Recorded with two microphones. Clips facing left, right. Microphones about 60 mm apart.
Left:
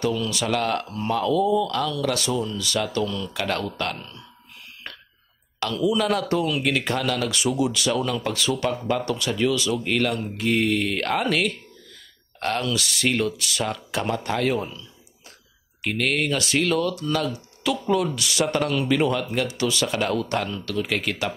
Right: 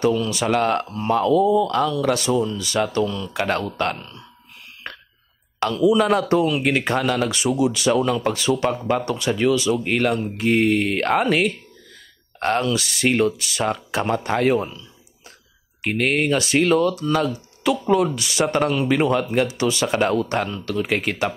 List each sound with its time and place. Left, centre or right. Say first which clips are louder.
0.2 s speech: right 4 dB; right
5.6 s speech: right 5 dB; right
15.8 s speech: right 3 dB; right